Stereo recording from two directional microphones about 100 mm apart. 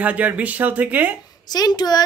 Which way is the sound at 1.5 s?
40° left (ahead or behind).